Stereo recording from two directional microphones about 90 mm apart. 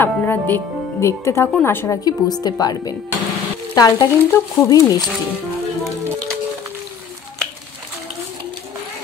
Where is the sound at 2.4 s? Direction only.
45° left (ahead or behind).